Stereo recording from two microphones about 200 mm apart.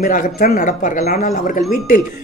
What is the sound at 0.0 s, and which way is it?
Speech, 40° left (ahead or behind).